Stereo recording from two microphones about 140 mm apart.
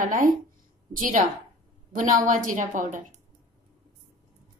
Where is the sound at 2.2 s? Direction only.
70° right (ahead or behind).